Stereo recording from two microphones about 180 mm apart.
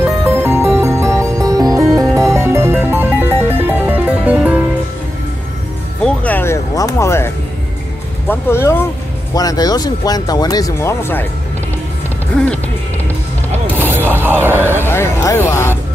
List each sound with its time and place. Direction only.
0.0 s music: 10° right (ahead or behind)
6.0 s music: 10° left (ahead or behind)
8.3 s speech: 15° left (ahead or behind)
12.3 s speech: 5° left (ahead or behind)
13.7 s a sound: 10° right (ahead or behind)
14.9 s speech: 15° left (ahead or behind)